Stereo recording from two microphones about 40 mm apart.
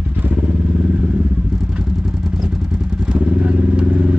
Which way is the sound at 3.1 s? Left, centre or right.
Right.